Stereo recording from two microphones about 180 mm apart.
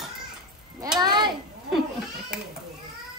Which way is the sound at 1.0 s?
25° right (ahead or behind).